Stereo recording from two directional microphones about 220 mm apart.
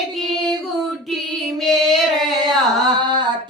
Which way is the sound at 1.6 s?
Centre (ahead or behind).